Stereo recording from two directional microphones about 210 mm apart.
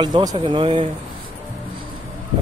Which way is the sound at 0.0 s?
20° right (ahead or behind).